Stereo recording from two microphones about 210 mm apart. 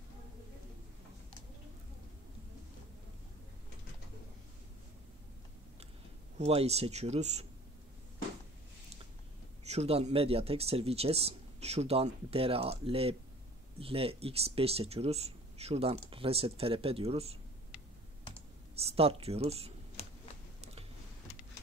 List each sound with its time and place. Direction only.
6.3 s speech: 30° right (ahead or behind)
9.7 s speech: 30° right (ahead or behind)
18.8 s speech: 30° right (ahead or behind)